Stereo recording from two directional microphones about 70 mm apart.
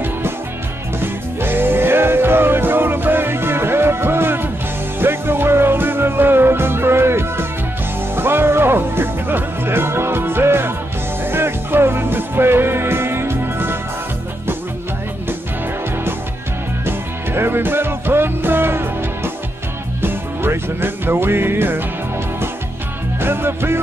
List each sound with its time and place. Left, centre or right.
0.9 s music: right
16.8 s music: right
23.2 s music: right